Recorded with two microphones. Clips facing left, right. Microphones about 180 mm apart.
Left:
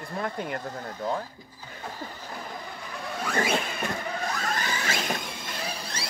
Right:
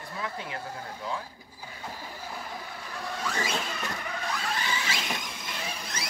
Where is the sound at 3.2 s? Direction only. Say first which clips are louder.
Left 6 dB; 55° left (ahead or behind).